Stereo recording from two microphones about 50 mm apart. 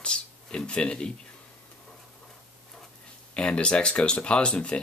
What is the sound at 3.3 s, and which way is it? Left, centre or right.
Speech, centre.